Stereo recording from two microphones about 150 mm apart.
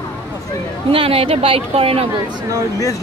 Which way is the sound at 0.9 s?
40° right (ahead or behind).